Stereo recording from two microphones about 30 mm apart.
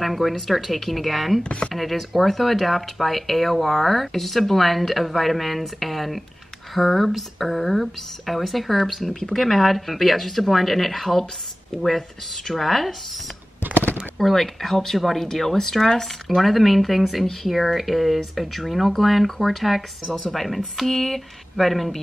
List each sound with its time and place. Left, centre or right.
0.0 s speech: centre
1.4 s speech: left
1.7 s speech: centre
14.1 s speech: centre